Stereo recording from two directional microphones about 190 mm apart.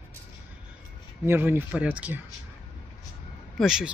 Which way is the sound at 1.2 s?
10° right (ahead or behind).